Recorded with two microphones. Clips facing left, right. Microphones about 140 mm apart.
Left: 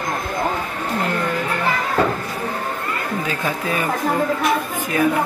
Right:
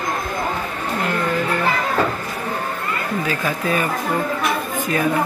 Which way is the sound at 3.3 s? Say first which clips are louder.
Right 3 dB; 20° left (ahead or behind).